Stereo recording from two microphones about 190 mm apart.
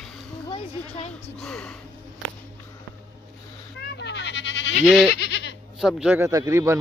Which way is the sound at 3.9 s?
65° left (ahead or behind).